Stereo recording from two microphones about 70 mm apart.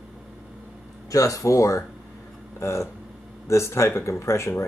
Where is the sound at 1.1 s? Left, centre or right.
Left.